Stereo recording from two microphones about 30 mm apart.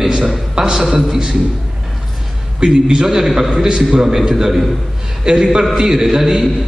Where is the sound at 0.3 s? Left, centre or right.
Right.